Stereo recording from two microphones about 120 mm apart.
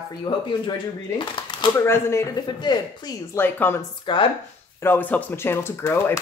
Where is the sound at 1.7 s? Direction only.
20° left (ahead or behind).